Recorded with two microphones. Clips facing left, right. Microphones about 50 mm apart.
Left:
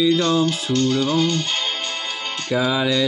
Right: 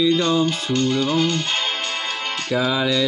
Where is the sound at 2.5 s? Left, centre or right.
Centre.